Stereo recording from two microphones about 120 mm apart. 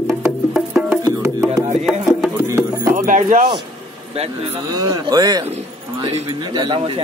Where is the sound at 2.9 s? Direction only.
90° right.